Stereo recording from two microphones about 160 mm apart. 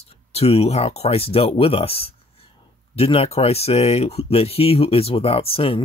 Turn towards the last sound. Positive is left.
turn(degrees=35)  # may be behind; listen again after turning